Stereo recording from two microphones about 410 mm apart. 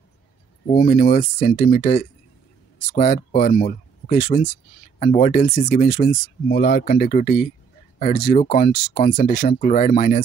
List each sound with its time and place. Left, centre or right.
0.7 s speech: centre